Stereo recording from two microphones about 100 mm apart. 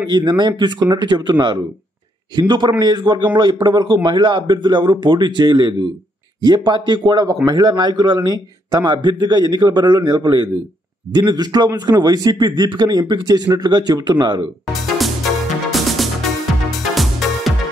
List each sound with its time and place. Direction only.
0.1 s a man's voice: 50° right (ahead or behind)
14.7 s music: centre (ahead or behind)